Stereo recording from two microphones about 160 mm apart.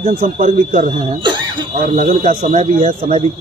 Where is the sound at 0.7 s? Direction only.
50° right (ahead or behind).